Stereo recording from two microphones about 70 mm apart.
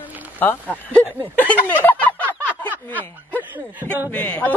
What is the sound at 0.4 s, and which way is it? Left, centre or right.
A man's voice, left.